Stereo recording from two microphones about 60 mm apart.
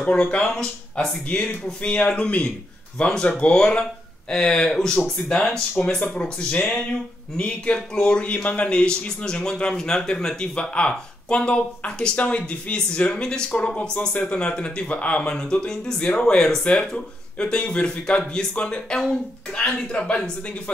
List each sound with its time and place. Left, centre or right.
0.1 s speech: centre
1.3 s speech: centre